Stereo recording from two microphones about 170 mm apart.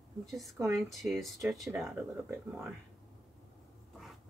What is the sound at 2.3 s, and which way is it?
Speech, 15° right (ahead or behind).